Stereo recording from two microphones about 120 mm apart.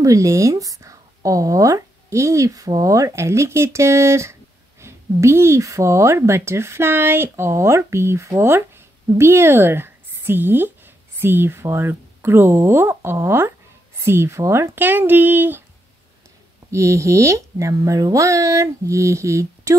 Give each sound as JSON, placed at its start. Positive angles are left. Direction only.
{"t": 0.0, "sound": "speech", "side_deg": -25}
{"t": 16.7, "sound": "speech", "side_deg": -25}